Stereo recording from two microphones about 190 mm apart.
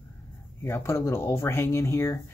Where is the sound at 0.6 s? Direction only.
15° left (ahead or behind).